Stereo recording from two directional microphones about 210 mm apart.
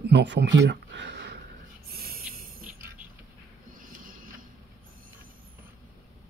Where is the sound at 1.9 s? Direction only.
45° right (ahead or behind).